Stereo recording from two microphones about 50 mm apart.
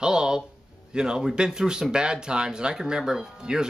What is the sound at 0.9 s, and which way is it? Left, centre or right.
Speech, centre.